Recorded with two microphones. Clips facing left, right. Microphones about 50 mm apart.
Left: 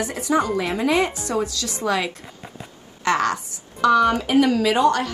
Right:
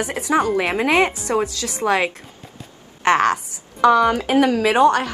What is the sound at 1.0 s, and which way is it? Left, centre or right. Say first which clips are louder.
A woman's voice: right 4 dB; right.